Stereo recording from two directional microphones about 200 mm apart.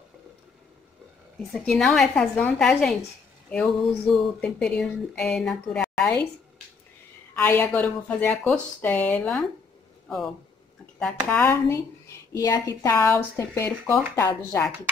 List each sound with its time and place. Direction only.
1.5 s speech: centre (ahead or behind)
7.3 s speech: 10° left (ahead or behind)